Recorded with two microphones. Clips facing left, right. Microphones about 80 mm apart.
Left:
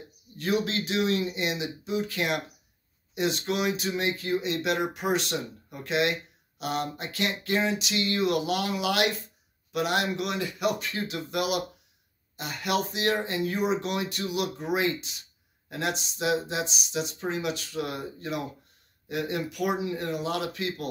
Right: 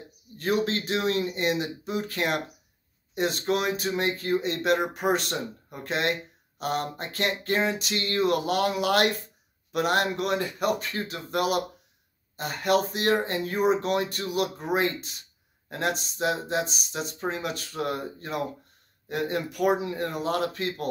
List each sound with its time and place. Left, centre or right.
0.4 s speech: right